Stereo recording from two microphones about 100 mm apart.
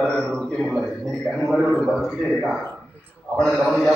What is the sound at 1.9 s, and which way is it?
A man's voice, centre (ahead or behind).